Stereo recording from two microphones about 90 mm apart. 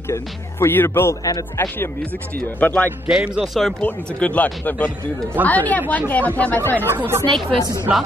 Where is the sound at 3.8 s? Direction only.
15° left (ahead or behind).